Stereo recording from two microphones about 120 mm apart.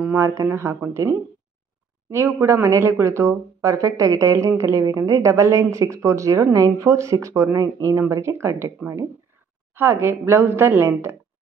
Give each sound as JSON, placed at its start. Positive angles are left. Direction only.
{"t": 0.0, "sound": "speech", "side_deg": -20}